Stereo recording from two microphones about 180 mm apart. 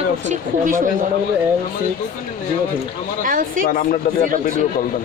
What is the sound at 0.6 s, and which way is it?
Speech, 50° right (ahead or behind).